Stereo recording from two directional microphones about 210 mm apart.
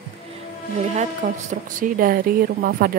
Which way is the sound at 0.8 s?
30° right (ahead or behind).